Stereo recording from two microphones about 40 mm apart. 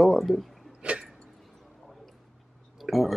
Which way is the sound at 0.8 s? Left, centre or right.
Right.